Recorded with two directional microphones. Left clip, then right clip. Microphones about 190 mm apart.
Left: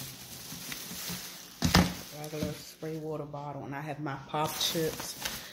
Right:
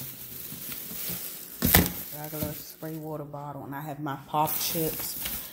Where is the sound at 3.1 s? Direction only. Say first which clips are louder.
Right 1 dB; 20° right (ahead or behind).